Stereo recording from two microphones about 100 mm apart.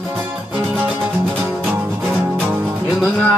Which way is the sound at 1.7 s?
20° right (ahead or behind).